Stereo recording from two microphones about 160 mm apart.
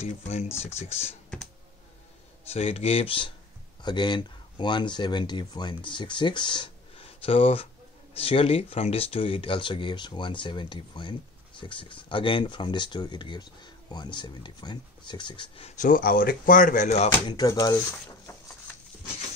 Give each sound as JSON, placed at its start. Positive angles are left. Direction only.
{"t": 0.0, "sound": "speech", "side_deg": 45}
{"t": 2.5, "sound": "speech", "side_deg": 40}
{"t": 15.7, "sound": "speech", "side_deg": 55}
{"t": 17.3, "sound": "speech", "side_deg": 20}